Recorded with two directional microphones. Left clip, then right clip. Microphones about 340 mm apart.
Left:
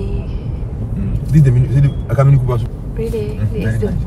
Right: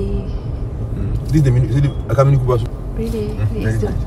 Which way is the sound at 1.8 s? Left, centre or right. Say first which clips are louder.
Right 3 dB; right.